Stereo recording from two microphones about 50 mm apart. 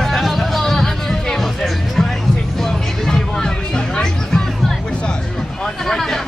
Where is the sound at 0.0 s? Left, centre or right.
Centre.